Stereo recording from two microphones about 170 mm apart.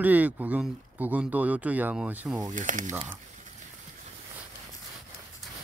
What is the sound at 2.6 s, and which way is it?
Speech, 50° right (ahead or behind).